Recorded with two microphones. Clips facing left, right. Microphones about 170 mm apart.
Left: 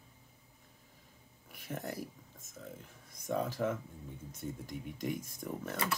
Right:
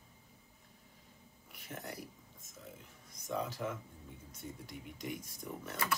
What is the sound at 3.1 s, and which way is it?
Speech, 50° left (ahead or behind).